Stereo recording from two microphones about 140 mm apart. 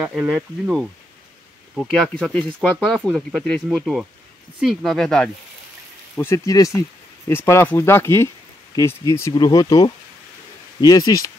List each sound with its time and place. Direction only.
0.0 s speech: 5° right (ahead or behind)
6.1 s speech: 20° left (ahead or behind)